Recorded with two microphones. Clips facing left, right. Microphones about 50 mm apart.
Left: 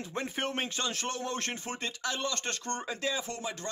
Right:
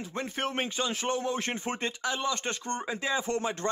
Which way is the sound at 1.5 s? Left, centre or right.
Right.